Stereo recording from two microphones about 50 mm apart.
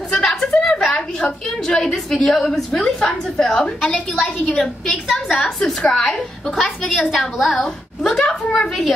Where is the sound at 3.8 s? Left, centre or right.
Left.